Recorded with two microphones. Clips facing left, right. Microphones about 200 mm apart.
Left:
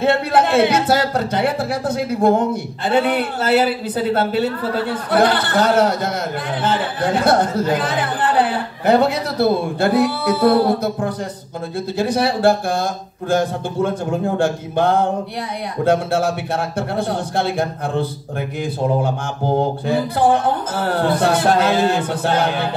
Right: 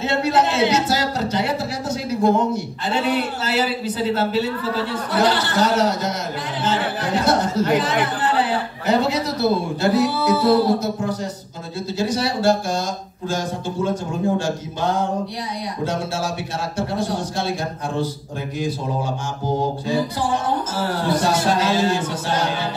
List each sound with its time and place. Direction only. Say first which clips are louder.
0.0 s speech: left 3 dB; 55° left (ahead or behind)
19.9 s speech: left 6 dB; 60° left (ahead or behind)